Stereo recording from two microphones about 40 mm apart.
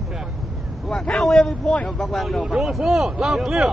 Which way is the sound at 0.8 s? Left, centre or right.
Centre.